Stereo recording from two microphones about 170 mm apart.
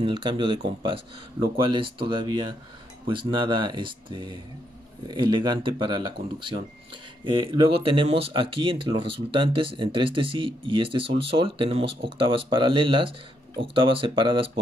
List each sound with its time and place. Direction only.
0.0 s speech: 30° right (ahead or behind)
1.6 s speech: 30° right (ahead or behind)